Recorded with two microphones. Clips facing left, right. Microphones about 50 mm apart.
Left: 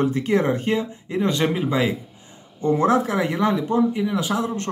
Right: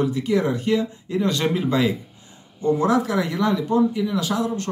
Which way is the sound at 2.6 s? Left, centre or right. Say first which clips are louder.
Left 1 dB; left.